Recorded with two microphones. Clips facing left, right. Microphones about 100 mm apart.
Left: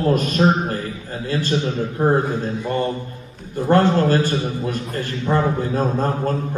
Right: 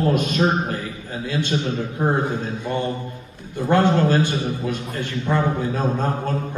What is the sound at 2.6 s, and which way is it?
A man's voice, 45° left (ahead or behind).